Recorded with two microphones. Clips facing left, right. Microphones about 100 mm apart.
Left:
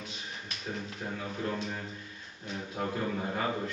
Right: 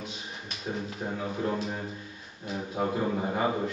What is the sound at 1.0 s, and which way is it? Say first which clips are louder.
A man's voice: right 4 dB; 15° right (ahead or behind).